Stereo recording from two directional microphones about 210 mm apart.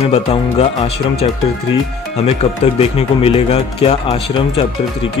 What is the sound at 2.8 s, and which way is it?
Speech, 30° left (ahead or behind).